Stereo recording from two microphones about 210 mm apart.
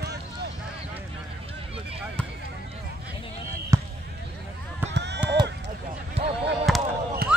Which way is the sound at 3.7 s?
15° right (ahead or behind).